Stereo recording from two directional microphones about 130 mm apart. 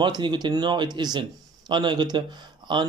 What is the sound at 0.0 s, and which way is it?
Speech, 35° right (ahead or behind).